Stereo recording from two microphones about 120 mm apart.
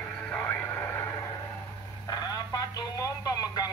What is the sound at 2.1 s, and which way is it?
Radio, 35° left (ahead or behind).